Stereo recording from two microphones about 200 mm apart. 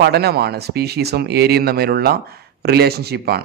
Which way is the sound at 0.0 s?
55° right (ahead or behind).